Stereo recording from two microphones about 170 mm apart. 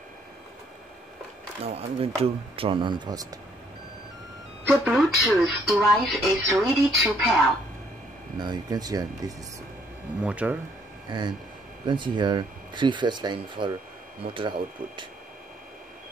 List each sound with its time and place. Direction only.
1.6 s speech: 35° right (ahead or behind)
4.6 s speech: centre (ahead or behind)
8.4 s speech: 25° right (ahead or behind)
10.2 s speech: 10° right (ahead or behind)
11.1 s speech: 25° right (ahead or behind)